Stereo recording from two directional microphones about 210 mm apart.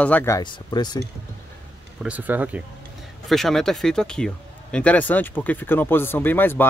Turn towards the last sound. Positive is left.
turn(degrees=10)  # may be behind; listen again after turning